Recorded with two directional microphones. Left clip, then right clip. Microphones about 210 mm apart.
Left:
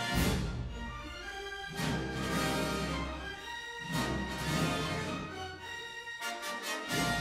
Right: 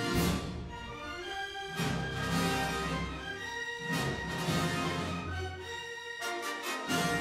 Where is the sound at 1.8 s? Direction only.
Centre (ahead or behind).